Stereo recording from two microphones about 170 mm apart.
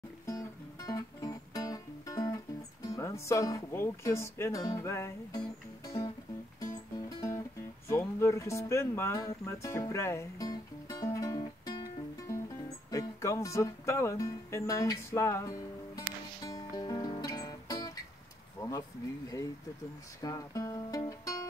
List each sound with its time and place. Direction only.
0.3 s music: 20° left (ahead or behind)
2.9 s speech: 20° left (ahead or behind)
5.9 s music: 20° left (ahead or behind)
12.9 s speech: 20° left (ahead or behind)
16.4 s music: 20° left (ahead or behind)
18.6 s a sound: 20° left (ahead or behind)
20.2 s music: 20° left (ahead or behind)